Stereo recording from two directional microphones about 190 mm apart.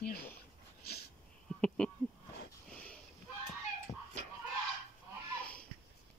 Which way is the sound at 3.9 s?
30° left (ahead or behind).